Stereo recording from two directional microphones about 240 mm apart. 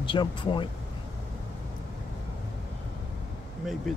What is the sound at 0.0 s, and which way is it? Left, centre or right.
Speech, left.